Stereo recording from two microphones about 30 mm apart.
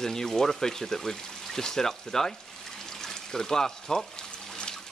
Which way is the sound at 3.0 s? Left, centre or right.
Centre.